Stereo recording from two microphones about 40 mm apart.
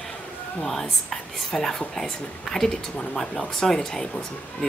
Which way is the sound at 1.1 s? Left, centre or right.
Centre.